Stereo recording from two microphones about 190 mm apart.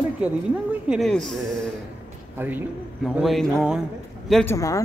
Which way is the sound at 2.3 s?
10° right (ahead or behind).